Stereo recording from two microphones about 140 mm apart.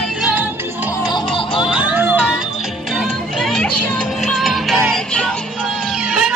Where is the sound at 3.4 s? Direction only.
5° left (ahead or behind).